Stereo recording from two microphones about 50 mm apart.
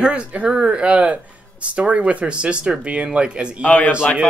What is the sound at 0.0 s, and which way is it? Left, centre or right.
Speech, right.